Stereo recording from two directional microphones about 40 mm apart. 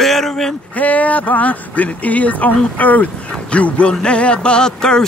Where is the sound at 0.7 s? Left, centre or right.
Left.